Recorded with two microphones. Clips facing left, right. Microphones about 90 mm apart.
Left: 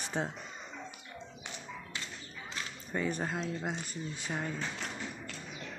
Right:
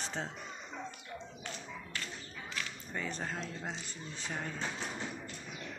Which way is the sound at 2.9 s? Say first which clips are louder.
Left 6 dB; 10° left (ahead or behind).